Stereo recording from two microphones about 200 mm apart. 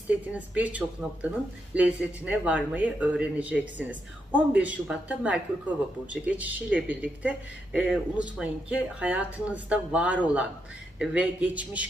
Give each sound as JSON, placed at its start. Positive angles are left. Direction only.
{"t": 0.1, "sound": "speech", "side_deg": -5}